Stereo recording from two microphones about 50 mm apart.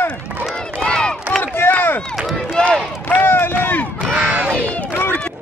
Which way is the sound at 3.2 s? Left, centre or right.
Left.